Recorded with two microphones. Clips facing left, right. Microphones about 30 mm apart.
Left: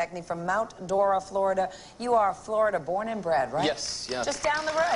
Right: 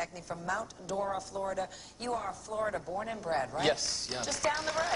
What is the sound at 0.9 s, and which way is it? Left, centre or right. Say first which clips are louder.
Speech: left 10 dB; left.